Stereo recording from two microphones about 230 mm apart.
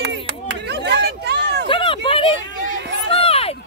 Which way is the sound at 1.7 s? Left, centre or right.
Left.